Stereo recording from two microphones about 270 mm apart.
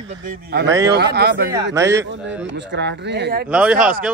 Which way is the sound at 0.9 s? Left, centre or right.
Right.